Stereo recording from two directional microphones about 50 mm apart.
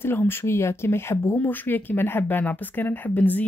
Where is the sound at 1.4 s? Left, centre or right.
Left.